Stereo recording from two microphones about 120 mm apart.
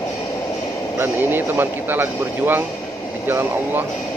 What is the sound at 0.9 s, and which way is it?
Speech, 15° right (ahead or behind).